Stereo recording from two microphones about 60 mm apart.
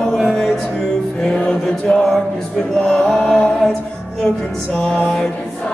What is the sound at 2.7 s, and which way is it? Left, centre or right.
Chant, centre.